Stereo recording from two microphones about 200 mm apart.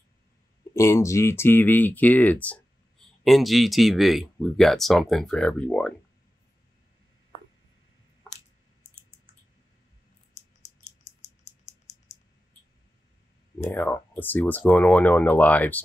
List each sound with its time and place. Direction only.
0.7 s speech: 15° left (ahead or behind)
11.1 s a sound: 35° left (ahead or behind)
13.7 s speech: 10° left (ahead or behind)